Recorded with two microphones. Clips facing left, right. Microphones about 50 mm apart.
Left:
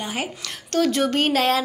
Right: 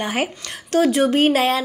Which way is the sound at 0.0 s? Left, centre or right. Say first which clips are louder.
Right 5 dB; right.